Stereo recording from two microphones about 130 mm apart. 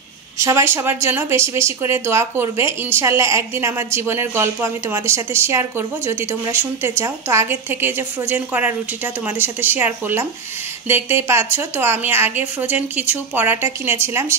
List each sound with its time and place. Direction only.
0.4 s a woman's voice: 20° right (ahead or behind)